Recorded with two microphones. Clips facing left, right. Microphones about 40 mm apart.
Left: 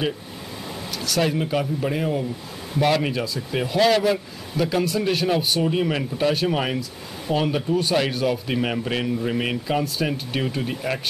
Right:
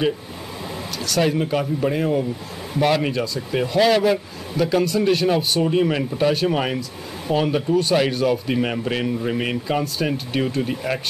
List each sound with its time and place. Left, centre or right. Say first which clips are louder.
1.0 s a man's voice: right 2 dB; centre